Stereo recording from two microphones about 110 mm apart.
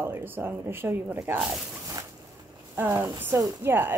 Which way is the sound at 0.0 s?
20° right (ahead or behind).